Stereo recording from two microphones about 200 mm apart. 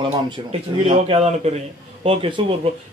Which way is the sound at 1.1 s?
30° right (ahead or behind).